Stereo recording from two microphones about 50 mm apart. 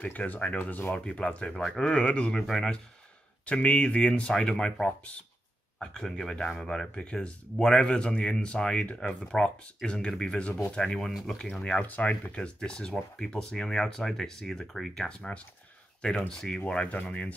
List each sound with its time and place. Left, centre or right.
0.3 s speech: left
0.9 s speech: left
2.4 s speech: centre
3.4 s speech: left
5.9 s speech: centre
7.5 s speech: centre
11.8 s speech: left; by 15.0 s centre
15.0 s speech: left